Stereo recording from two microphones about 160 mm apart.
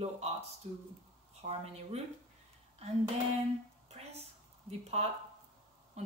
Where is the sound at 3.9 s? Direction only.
40° right (ahead or behind).